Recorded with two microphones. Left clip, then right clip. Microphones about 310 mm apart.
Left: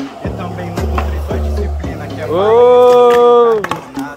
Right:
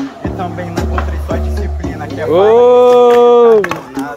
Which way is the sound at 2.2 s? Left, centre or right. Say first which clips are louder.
Right 1 dB; right.